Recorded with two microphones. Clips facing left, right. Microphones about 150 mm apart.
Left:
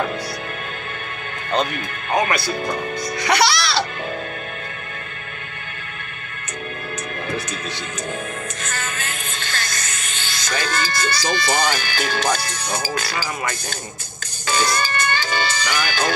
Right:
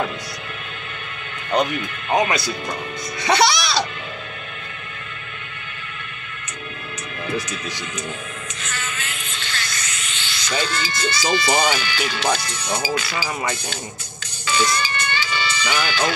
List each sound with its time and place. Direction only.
2.1 s speech: 20° right (ahead or behind)
8.6 s music: 45° left (ahead or behind)
10.6 s speech: 45° left (ahead or behind)
14.4 s music: 45° left (ahead or behind)